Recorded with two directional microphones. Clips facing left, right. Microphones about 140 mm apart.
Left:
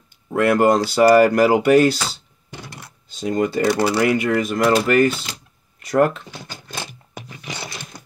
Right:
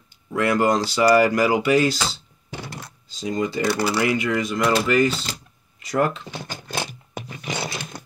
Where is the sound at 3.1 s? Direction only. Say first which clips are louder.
Left 4 dB; 55° left (ahead or behind).